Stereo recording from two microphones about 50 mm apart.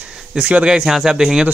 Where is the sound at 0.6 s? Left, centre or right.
Centre.